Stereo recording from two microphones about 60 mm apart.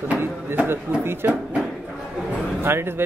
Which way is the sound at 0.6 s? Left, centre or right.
Right.